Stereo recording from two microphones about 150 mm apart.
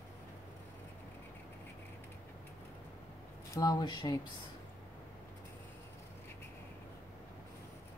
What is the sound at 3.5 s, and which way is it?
Speech, 25° left (ahead or behind).